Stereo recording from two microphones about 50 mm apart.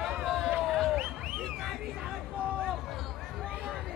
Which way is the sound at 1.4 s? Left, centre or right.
Centre.